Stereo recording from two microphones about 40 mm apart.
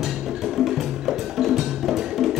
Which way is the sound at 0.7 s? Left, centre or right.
Centre.